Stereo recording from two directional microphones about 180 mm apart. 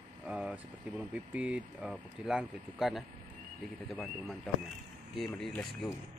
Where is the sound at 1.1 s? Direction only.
5° right (ahead or behind).